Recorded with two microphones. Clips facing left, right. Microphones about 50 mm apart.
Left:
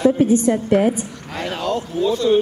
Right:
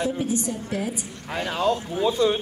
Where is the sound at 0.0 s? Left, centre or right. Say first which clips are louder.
Left 10 dB; left.